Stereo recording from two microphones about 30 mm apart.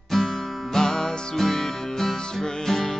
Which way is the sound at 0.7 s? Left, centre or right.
Left.